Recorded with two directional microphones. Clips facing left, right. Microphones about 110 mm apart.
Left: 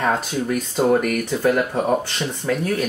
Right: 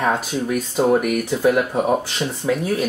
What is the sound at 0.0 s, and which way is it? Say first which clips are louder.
Speech: right 1 dB; 5° right (ahead or behind).